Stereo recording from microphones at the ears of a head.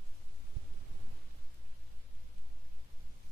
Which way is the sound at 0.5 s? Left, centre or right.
Right.